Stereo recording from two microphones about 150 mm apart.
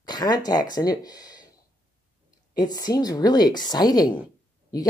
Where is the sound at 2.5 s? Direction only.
25° left (ahead or behind).